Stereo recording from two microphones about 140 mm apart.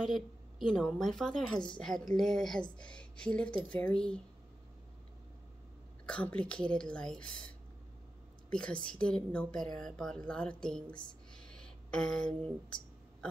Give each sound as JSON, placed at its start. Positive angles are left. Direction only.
{"t": 0.0, "sound": "a woman's voice", "side_deg": 0}
{"t": 6.0, "sound": "a woman's voice", "side_deg": 10}
{"t": 11.3, "sound": "a sound", "side_deg": 5}